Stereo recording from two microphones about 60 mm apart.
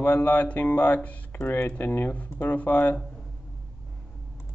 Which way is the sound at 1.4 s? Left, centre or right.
Left.